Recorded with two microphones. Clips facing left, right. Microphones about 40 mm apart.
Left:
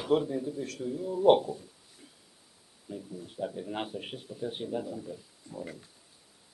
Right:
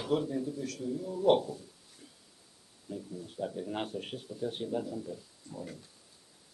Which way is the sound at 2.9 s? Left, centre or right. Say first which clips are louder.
Even; centre.